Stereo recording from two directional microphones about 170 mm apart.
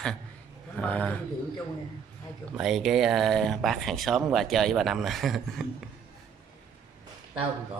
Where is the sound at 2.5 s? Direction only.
Centre (ahead or behind).